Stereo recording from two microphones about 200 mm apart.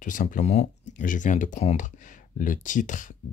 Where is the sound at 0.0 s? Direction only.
40° left (ahead or behind).